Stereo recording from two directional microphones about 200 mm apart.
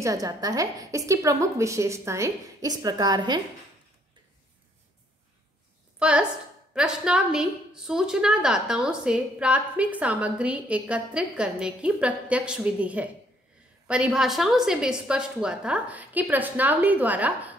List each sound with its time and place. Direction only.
0.0 s a woman's voice: 15° right (ahead or behind)
5.9 s a woman's voice: 5° right (ahead or behind)